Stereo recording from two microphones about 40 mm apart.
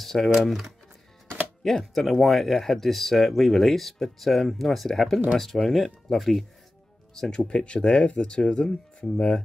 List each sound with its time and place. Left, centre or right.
0.0 s speech: centre
7.2 s speech: centre